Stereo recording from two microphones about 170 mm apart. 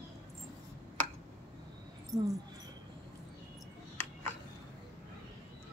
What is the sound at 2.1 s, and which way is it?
Speech, 20° right (ahead or behind).